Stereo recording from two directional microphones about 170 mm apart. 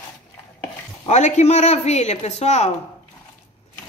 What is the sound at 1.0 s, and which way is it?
A woman's voice, 40° left (ahead or behind).